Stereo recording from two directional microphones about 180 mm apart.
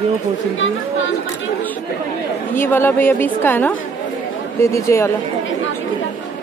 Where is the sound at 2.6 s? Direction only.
10° left (ahead or behind).